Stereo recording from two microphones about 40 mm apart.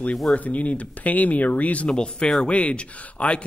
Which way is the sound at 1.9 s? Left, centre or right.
Left.